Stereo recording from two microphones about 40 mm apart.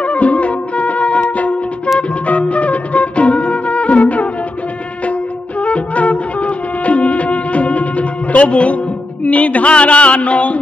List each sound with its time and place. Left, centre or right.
0.0 s music: left
5.6 s music: left